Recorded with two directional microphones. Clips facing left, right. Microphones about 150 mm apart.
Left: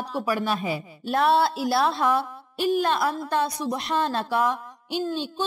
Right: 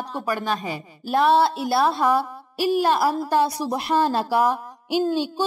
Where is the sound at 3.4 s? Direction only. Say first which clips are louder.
Right 2 dB; 30° right (ahead or behind).